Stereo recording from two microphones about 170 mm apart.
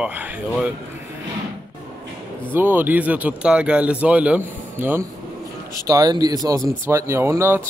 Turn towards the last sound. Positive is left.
turn(degrees=-15)  # may be behind; listen again after turning